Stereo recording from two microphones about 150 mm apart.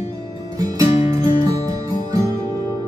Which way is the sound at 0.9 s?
45° left (ahead or behind).